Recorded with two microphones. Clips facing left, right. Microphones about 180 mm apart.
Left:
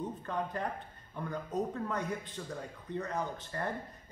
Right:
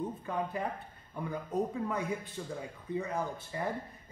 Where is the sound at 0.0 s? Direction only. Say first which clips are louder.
Right 1 dB; 10° right (ahead or behind).